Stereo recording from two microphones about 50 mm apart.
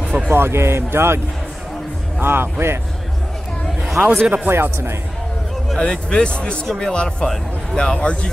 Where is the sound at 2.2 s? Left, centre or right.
Right.